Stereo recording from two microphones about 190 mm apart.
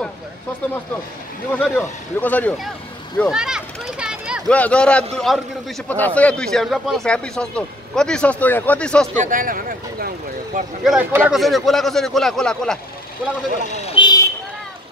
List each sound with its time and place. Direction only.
1.6 s speech: 10° left (ahead or behind)
3.2 s children playing: centre (ahead or behind)
4.5 s speech: 5° left (ahead or behind)
9.1 s speech: 45° right (ahead or behind)
10.8 s speech: 5° right (ahead or behind)
13.9 s a sound: 25° left (ahead or behind)